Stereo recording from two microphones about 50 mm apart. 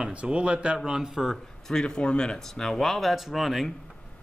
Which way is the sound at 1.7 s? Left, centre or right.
Centre.